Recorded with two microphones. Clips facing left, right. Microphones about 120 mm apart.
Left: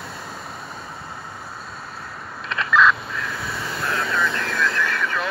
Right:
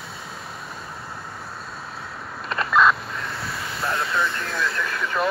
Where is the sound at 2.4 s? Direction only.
5° right (ahead or behind).